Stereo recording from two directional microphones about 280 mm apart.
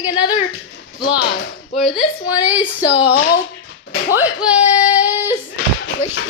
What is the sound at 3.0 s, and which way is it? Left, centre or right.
Speech, left.